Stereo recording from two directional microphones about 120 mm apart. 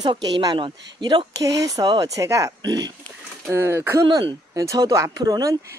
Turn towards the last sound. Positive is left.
turn(degrees=-30)  # may be behind; listen again after turning